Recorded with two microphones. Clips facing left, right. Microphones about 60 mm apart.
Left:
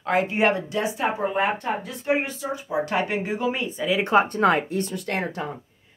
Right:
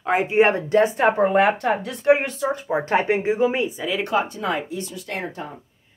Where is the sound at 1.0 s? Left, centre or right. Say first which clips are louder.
Right 7 dB; right.